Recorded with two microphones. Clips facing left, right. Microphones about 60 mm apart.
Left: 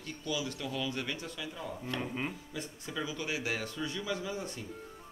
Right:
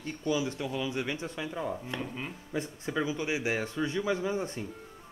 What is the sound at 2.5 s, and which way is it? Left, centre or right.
Speech, right.